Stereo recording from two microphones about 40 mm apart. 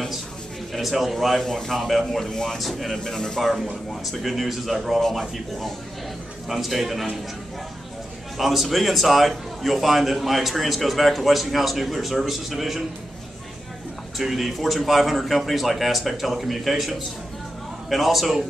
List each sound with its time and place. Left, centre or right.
0.7 s a man's voice: centre
1.4 s a man's voice: centre
1.9 s a man's voice: centre
3.3 s a man's voice: centre
8.4 s a man's voice: centre
14.1 s a man's voice: centre